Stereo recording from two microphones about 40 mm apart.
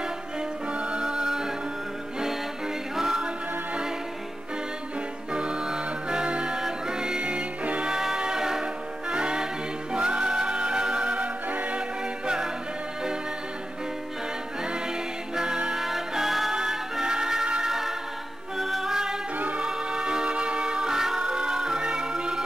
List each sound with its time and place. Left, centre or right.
0.7 s music: right
3.0 s music: centre
5.3 s music: right
7.8 s music: centre
15.3 s music: right
15.8 s music: centre
19.3 s music: right
19.6 s music: right